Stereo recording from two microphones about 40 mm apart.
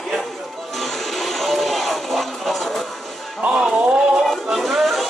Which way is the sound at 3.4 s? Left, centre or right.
Right.